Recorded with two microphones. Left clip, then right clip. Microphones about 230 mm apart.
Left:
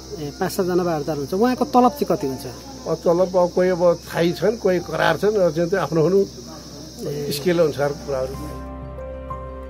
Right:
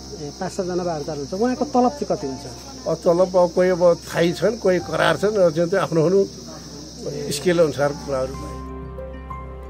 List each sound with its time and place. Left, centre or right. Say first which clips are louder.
0.4 s speech: left 4 dB; left
2.9 s speech: right 1 dB; centre
7.2 s speech: right 1 dB; centre